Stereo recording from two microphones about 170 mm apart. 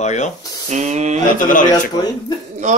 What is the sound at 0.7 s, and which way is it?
Speech, 40° right (ahead or behind).